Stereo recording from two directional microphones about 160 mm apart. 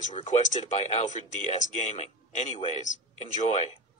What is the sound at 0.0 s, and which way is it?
A man's voice, 50° left (ahead or behind).